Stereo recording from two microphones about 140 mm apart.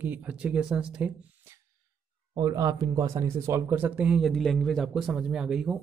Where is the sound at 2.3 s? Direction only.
25° right (ahead or behind).